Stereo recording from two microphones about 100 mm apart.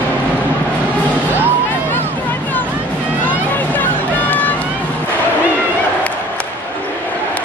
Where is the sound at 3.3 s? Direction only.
15° left (ahead or behind).